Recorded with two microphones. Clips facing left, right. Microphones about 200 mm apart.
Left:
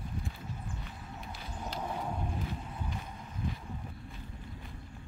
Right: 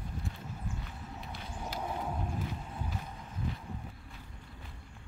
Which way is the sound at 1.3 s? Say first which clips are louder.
Even; centre (ahead or behind).